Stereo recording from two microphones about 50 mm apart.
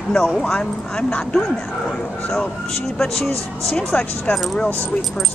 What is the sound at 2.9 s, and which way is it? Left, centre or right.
Speech, centre.